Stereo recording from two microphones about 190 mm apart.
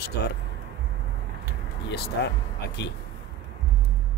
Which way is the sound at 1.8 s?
60° left (ahead or behind).